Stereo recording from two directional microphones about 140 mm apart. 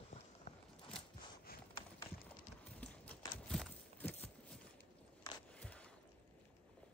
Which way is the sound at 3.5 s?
10° left (ahead or behind).